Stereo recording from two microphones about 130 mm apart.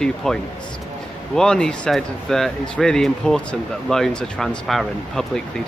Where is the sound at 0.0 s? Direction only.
5° left (ahead or behind).